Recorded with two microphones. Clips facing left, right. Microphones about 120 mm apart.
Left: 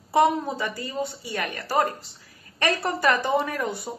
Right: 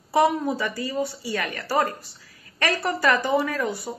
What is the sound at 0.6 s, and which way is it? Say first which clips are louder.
A woman's voice: right 2 dB; 20° left (ahead or behind).